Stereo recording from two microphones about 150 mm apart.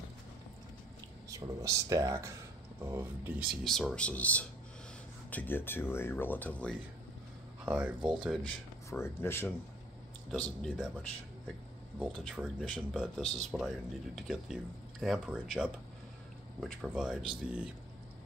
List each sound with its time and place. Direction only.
1.3 s speech: 20° right (ahead or behind)
3.6 s speech: centre (ahead or behind)
7.6 s speech: 10° right (ahead or behind)
8.5 s speech: 15° left (ahead or behind)
10.3 s speech: 5° left (ahead or behind)